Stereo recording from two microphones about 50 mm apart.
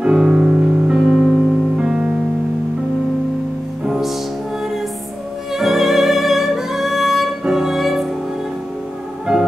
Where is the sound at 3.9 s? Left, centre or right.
Centre.